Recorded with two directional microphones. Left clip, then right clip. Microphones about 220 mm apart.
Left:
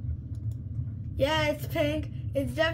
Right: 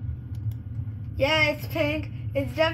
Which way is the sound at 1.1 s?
45° left (ahead or behind).